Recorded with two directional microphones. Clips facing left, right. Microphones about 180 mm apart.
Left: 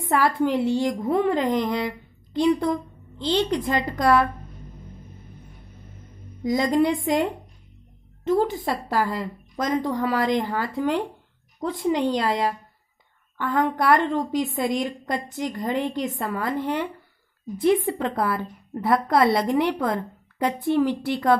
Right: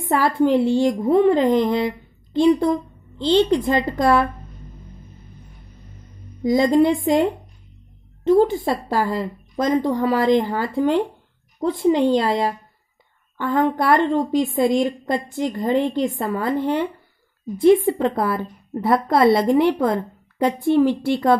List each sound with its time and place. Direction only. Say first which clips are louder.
0.1 s a woman's voice: right 4 dB; 25° right (ahead or behind)
6.4 s a woman's voice: right 5 dB; 25° right (ahead or behind)